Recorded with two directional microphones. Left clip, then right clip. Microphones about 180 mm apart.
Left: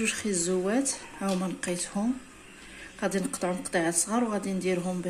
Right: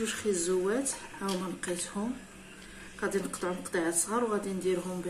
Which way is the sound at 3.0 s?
20° left (ahead or behind).